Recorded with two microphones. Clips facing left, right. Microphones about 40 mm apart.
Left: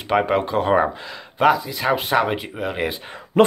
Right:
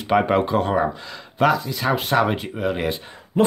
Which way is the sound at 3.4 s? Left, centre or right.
Left.